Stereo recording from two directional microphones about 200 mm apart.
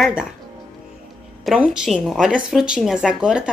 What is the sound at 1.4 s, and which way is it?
Speech, centre (ahead or behind).